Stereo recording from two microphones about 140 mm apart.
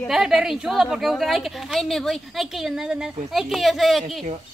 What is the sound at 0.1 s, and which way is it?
A woman's voice, 5° right (ahead or behind).